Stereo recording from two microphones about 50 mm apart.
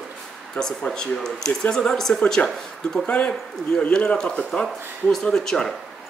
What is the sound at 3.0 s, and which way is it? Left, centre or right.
Speech, left.